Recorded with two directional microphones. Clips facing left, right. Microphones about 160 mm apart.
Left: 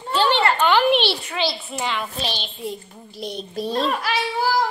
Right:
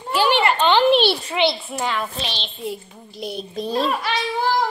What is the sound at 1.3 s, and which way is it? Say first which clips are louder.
Speech: right 5 dB; 20° right (ahead or behind).